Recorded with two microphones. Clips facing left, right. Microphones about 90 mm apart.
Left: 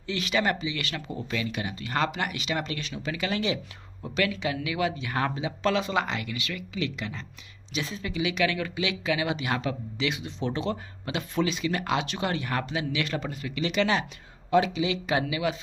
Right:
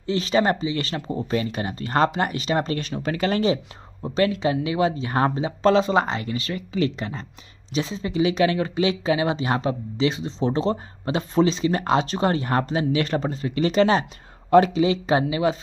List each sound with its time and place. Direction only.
0.0 s speech: 35° right (ahead or behind)